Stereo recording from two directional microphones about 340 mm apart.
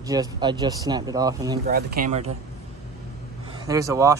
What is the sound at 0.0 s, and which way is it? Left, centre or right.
Speech, centre.